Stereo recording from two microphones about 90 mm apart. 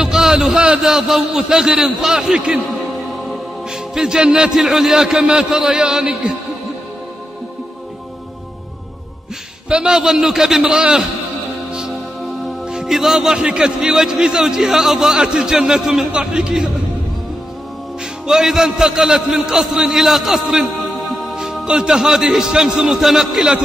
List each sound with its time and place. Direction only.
0.0 s a man's voice: 5° right (ahead or behind)
9.7 s a man's voice: 10° right (ahead or behind)
12.6 s a man's voice: 5° right (ahead or behind)
18.2 s a man's voice: 5° right (ahead or behind)